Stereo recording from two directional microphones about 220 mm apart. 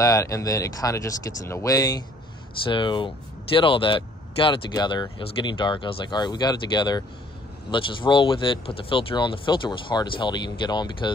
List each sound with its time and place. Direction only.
0.0 s speech: 15° left (ahead or behind)